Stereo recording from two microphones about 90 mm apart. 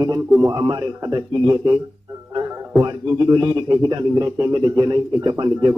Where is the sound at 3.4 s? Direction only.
50° right (ahead or behind).